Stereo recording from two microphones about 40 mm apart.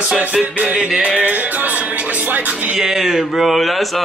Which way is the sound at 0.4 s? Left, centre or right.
Right.